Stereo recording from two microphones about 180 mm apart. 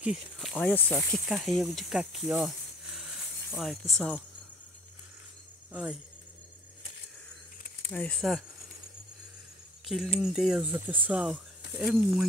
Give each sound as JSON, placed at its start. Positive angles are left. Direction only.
{"t": 0.0, "sound": "speech", "side_deg": 0}
{"t": 3.5, "sound": "speech", "side_deg": 0}
{"t": 5.7, "sound": "speech", "side_deg": -5}
{"t": 7.9, "sound": "speech", "side_deg": 5}
{"t": 9.8, "sound": "speech", "side_deg": 0}